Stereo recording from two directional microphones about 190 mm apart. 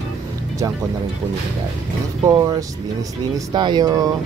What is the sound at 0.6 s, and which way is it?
Speech, 20° right (ahead or behind).